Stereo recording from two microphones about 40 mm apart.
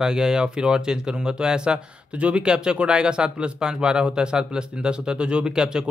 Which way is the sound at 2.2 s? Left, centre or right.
Right.